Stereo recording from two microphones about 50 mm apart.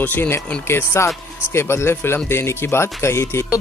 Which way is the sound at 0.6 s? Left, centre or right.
Left.